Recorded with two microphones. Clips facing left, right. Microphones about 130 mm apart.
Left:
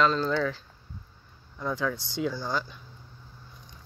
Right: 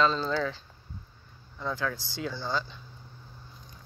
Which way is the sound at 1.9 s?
20° left (ahead or behind).